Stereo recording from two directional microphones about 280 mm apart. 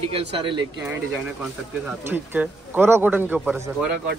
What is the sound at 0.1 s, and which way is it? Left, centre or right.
Speech, centre.